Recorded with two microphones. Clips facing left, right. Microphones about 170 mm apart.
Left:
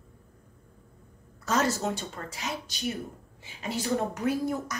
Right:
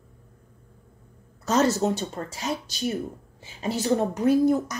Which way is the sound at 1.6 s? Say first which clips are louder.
Right 9 dB; 35° right (ahead or behind).